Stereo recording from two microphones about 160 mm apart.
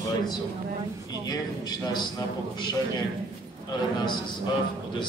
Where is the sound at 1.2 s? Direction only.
25° left (ahead or behind).